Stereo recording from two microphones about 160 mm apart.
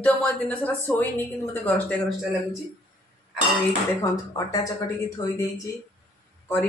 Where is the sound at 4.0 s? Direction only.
20° left (ahead or behind).